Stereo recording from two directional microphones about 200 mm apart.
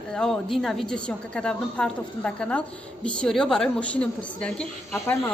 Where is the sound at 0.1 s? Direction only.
5° left (ahead or behind).